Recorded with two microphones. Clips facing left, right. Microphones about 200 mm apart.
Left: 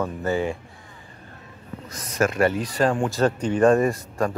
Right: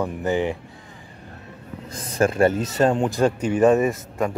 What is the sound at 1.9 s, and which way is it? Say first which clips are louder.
Speech: right 2 dB; 30° right (ahead or behind).